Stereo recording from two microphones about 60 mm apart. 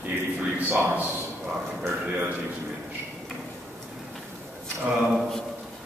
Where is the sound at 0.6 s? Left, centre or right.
Right.